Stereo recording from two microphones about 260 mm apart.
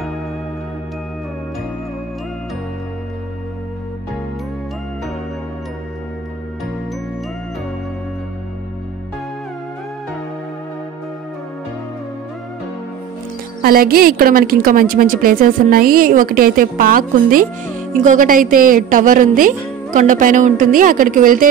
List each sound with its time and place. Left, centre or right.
13.6 s a woman's voice: right